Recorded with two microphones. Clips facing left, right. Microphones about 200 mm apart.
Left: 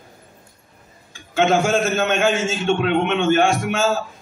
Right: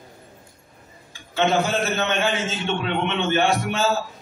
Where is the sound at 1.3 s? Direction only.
50° left (ahead or behind).